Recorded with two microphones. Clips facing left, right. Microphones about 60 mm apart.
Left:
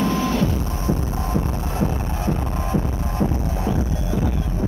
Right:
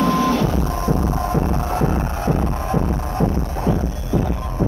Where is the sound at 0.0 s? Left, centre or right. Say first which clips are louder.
Right 4 dB; right.